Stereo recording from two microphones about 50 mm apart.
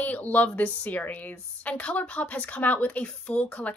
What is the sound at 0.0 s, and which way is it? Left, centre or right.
A woman's voice, left.